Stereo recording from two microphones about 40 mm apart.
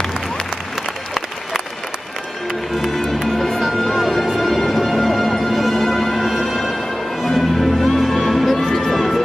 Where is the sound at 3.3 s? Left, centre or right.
Centre.